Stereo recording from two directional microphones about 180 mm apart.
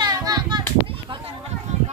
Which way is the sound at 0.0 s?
20° right (ahead or behind).